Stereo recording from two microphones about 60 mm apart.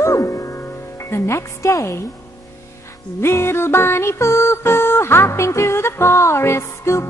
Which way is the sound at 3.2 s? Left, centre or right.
Left.